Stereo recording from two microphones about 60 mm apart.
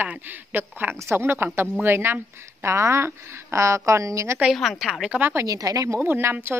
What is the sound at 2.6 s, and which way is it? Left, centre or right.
A woman's voice, right.